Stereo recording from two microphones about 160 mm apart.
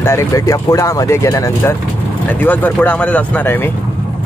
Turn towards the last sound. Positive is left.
turn(degrees=10)  # may be behind; listen again after turning